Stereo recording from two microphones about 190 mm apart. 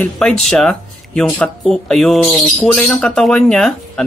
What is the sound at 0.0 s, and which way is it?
Speech, 5° left (ahead or behind).